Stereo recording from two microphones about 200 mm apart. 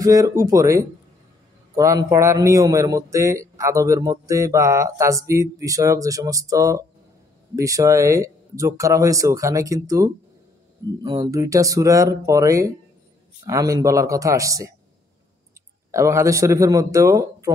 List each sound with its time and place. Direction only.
0.0 s a man's voice: 15° right (ahead or behind)
15.9 s a man's voice: 15° right (ahead or behind)